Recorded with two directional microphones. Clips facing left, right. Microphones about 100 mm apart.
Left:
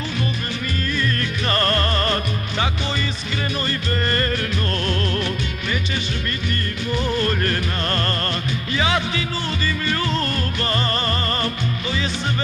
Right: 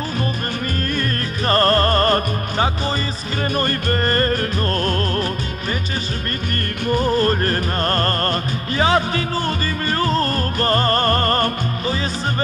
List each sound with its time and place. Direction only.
0.9 s music: 40° right (ahead or behind)
6.9 s music: 40° right (ahead or behind)